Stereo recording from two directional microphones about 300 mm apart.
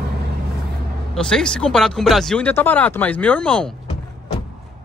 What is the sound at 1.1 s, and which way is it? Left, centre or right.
Speech, centre.